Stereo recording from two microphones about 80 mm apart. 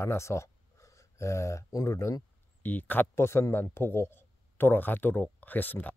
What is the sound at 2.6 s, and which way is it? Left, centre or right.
Speech, left.